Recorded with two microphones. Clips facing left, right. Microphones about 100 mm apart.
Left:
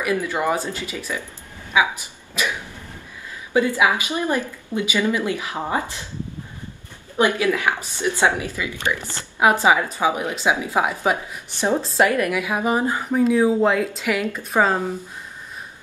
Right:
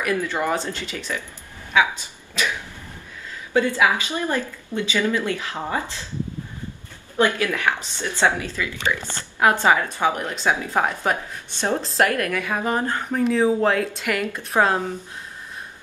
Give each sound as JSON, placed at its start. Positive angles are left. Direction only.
{"t": 0.0, "sound": "a woman's voice", "side_deg": 15}
{"t": 3.5, "sound": "a woman's voice", "side_deg": 15}
{"t": 7.2, "sound": "a woman's voice", "side_deg": 15}